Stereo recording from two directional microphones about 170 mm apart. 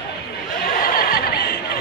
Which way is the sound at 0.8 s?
60° left (ahead or behind).